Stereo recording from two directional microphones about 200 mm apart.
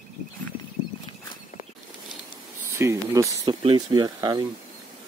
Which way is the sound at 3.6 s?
25° right (ahead or behind).